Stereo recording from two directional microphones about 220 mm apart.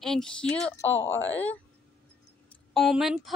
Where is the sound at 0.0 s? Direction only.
Centre (ahead or behind).